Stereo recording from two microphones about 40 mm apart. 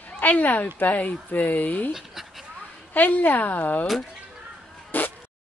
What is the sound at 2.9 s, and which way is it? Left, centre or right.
Speech, left.